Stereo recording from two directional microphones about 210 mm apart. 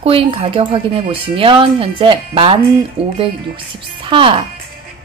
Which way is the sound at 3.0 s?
5° right (ahead or behind).